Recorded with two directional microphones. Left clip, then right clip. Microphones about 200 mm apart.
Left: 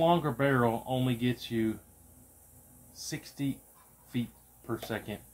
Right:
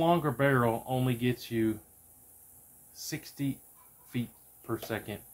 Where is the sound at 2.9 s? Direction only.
20° right (ahead or behind).